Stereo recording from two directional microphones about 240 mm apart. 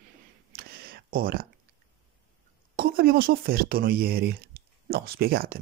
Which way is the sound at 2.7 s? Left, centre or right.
Right.